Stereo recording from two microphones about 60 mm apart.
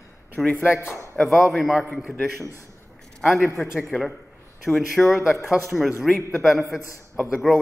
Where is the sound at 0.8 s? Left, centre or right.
Left.